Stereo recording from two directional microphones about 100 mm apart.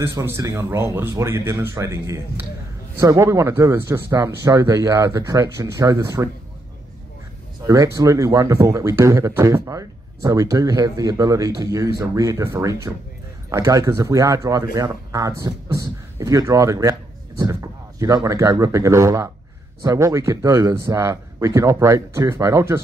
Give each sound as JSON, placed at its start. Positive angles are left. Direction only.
{"t": 0.0, "sound": "speech", "side_deg": -25}
{"t": 7.6, "sound": "speech", "side_deg": -30}